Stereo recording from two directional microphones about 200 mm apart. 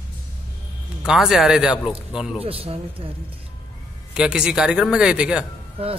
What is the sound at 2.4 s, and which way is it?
Speech, 30° right (ahead or behind).